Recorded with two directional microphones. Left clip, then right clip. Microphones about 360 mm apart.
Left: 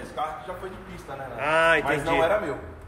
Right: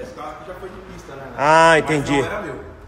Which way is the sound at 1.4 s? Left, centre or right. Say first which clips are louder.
Right 9 dB; right.